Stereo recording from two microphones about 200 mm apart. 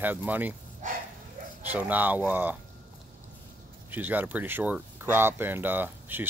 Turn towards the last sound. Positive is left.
turn(degrees=-10)  # may be behind; listen again after turning